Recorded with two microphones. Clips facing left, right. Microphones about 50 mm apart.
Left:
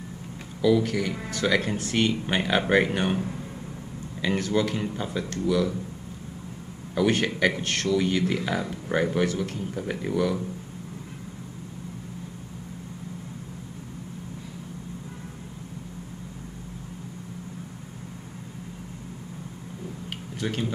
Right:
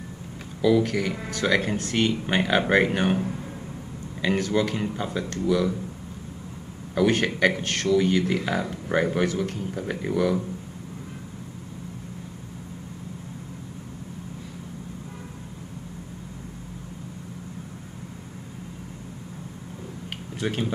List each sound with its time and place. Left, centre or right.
0.6 s speech: centre
4.2 s speech: centre
7.0 s speech: centre
20.3 s speech: centre